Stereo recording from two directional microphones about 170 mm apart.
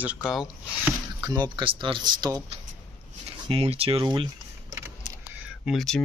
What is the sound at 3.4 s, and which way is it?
Speech, 35° right (ahead or behind).